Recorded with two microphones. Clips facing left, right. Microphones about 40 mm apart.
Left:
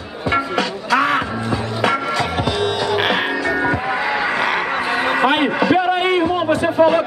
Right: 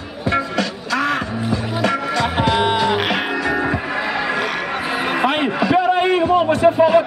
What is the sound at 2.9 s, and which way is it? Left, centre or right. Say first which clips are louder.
Music: left 2 dB; centre.